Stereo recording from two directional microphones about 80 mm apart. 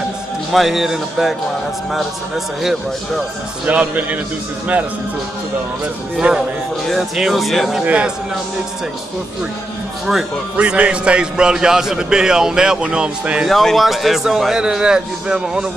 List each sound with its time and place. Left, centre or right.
0.5 s a man's voice: centre
3.6 s a man's voice: centre
6.2 s a man's voice: centre
7.2 s a man's voice: centre
7.8 s a man's voice: centre
10.5 s a man's voice: centre
13.5 s a man's voice: centre